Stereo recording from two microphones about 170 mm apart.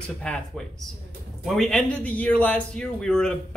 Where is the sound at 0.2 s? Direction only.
5° left (ahead or behind).